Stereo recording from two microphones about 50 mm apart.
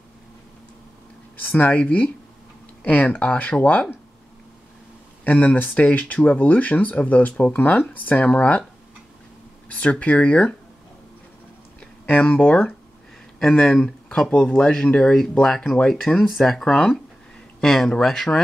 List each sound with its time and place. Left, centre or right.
1.6 s speech: left
5.2 s speech: left
9.7 s speech: left
12.3 s speech: left
13.4 s speech: centre